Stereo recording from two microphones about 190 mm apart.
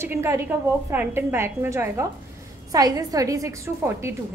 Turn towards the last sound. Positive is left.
turn(degrees=-15)  # may be behind; listen again after turning